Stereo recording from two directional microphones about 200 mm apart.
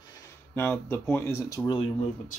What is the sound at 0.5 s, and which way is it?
Speech, 10° left (ahead or behind).